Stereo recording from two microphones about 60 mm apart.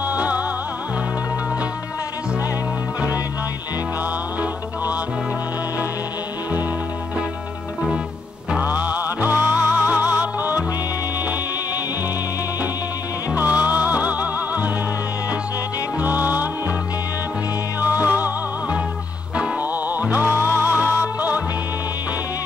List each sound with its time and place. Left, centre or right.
0.0 s music: right
8.5 s music: right
13.3 s music: right
16.0 s music: right
17.7 s music: right
19.6 s music: right
20.7 s music: right